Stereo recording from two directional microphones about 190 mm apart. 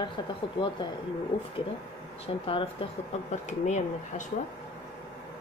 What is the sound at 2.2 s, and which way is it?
Speech, 30° left (ahead or behind).